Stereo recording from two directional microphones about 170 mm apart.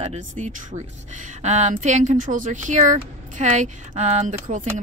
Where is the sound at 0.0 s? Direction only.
45° right (ahead or behind).